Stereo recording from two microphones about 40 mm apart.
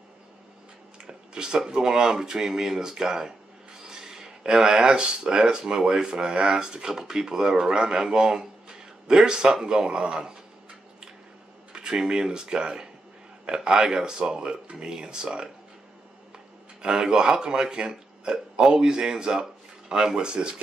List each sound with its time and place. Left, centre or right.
1.0 s speech: centre
11.7 s speech: centre
16.8 s speech: centre